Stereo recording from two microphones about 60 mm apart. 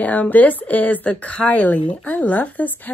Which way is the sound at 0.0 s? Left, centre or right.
Left.